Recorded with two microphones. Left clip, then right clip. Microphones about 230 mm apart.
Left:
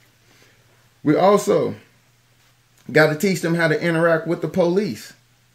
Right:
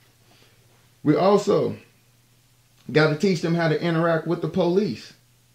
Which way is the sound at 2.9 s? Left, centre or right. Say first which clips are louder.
Left 5 dB; centre.